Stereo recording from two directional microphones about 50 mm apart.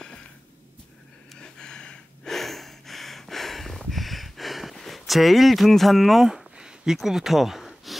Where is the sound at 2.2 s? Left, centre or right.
Centre.